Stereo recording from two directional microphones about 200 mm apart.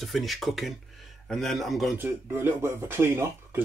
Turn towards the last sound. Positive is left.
turn(degrees=-10)  # may be behind; listen again after turning